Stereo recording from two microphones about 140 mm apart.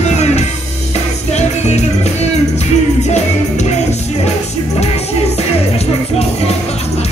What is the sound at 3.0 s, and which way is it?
Music, 55° left (ahead or behind).